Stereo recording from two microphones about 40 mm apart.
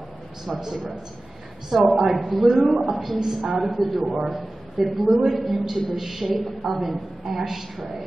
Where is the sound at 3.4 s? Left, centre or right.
Centre.